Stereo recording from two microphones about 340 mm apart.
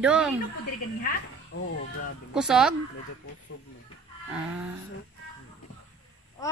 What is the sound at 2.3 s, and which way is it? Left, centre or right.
Speech, centre.